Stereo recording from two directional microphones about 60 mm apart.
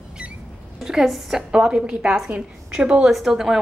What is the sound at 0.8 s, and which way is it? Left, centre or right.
Speech, centre.